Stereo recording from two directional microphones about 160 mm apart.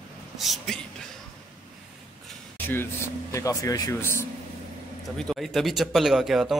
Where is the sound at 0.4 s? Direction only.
Centre (ahead or behind).